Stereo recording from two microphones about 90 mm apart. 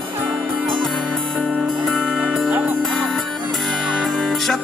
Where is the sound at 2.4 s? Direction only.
20° right (ahead or behind).